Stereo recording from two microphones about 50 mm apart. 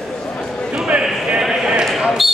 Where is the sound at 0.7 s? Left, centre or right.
Centre.